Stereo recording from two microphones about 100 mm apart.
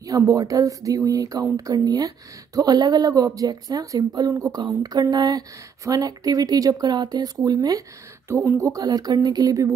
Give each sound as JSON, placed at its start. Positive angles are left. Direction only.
{"t": 0.0, "sound": "speech", "side_deg": -35}
{"t": 8.3, "sound": "speech", "side_deg": -25}